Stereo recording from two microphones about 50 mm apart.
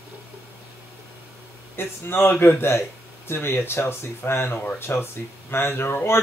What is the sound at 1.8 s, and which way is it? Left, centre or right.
Speech, left.